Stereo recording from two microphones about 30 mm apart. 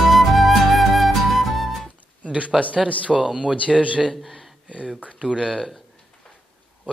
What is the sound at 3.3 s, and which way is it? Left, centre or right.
Speech, right.